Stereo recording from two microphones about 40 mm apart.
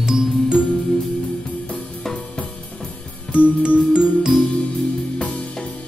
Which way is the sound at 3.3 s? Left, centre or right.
Right.